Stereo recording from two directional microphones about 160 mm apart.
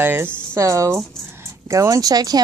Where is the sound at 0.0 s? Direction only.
15° right (ahead or behind).